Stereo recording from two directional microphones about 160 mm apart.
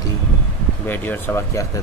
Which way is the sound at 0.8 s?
10° left (ahead or behind).